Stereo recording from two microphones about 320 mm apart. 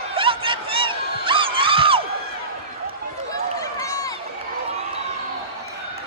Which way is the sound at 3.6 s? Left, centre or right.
Centre.